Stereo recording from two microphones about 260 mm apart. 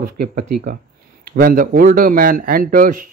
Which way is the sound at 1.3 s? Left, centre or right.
Right.